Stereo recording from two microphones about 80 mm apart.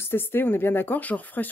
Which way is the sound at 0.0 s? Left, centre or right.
Left.